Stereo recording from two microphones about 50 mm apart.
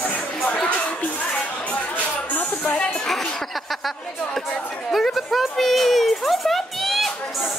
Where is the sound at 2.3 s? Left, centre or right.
Left.